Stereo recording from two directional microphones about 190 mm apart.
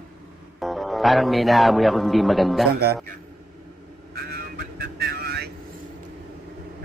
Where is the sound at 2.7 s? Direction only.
55° right (ahead or behind).